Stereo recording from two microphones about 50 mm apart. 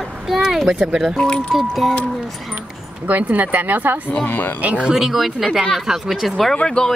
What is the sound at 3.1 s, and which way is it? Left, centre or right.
Speech, right.